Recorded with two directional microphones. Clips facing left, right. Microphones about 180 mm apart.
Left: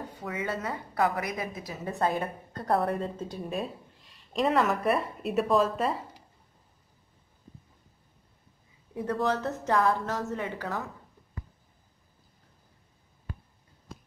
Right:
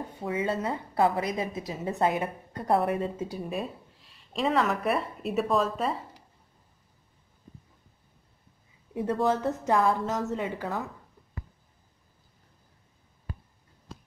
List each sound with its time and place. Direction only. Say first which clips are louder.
0.2 s a woman's voice: right 4 dB; 25° right (ahead or behind)
2.7 s speech: right 2 dB; centre (ahead or behind)
8.9 s a woman's voice: right 2 dB; 25° right (ahead or behind)